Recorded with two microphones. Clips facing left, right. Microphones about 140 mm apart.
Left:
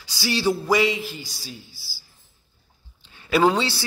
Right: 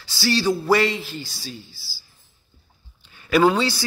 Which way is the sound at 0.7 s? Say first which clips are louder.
Right 1 dB; 5° left (ahead or behind).